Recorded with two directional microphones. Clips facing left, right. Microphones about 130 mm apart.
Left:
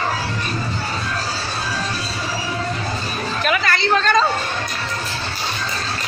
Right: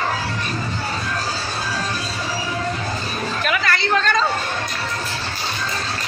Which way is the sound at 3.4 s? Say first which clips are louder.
Left 3 dB; 30° left (ahead or behind).